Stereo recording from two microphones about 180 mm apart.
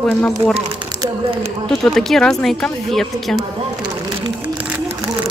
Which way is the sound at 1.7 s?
Centre (ahead or behind).